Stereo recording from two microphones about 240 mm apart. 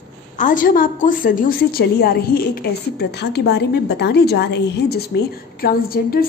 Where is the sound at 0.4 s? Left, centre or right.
Left.